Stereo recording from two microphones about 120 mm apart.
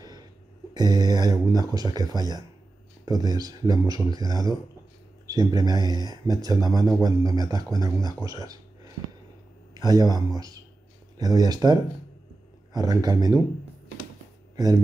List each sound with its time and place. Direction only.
0.7 s speech: 35° right (ahead or behind)